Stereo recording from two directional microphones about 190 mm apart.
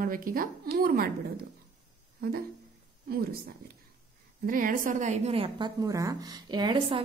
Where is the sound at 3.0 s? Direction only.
55° right (ahead or behind).